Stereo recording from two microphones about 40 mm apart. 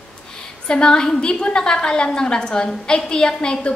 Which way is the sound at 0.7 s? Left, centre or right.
Left.